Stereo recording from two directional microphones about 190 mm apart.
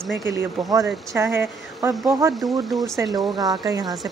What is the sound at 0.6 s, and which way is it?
Speech, centre (ahead or behind).